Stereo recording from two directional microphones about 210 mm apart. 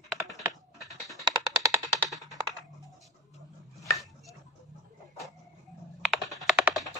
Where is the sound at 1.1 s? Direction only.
20° right (ahead or behind).